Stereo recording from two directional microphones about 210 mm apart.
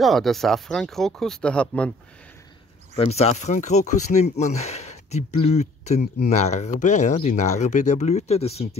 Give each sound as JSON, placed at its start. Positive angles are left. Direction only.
{"t": 0.0, "sound": "speech", "side_deg": 0}
{"t": 3.0, "sound": "speech", "side_deg": 30}